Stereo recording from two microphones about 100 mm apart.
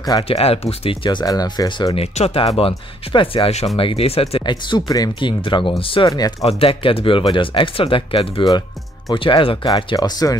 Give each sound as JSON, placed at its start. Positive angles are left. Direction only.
{"t": 0.2, "sound": "speech", "side_deg": 75}
{"t": 1.2, "sound": "speech", "side_deg": 40}
{"t": 2.0, "sound": "speech", "side_deg": 80}
{"t": 4.4, "sound": "speech", "side_deg": 50}
{"t": 5.2, "sound": "speech", "side_deg": 55}
{"t": 6.0, "sound": "speech", "side_deg": 40}
{"t": 6.4, "sound": "speech", "side_deg": 65}
{"t": 9.9, "sound": "speech", "side_deg": 40}